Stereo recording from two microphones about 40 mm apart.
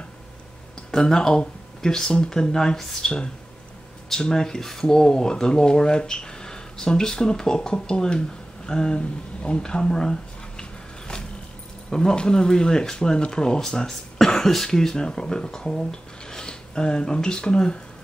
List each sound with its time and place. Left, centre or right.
0.9 s speech: centre
10.6 s a sound: left
11.9 s speech: centre